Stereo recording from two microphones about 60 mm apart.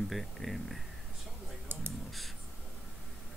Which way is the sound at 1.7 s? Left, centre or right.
Right.